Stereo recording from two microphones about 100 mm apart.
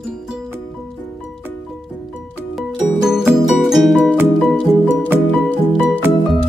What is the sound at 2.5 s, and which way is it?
Music, 5° right (ahead or behind).